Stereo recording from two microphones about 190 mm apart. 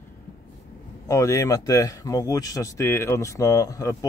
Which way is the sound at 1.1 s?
15° left (ahead or behind).